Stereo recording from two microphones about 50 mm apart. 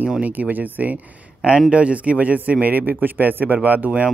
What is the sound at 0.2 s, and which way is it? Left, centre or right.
Speech, right.